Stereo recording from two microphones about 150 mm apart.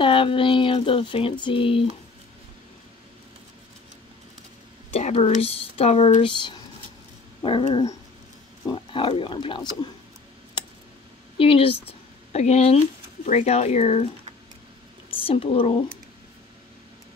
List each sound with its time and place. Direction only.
0.0 s speech: 35° left (ahead or behind)
4.9 s speech: 45° left (ahead or behind)
11.3 s speech: 40° left (ahead or behind)
15.2 s speech: 40° left (ahead or behind)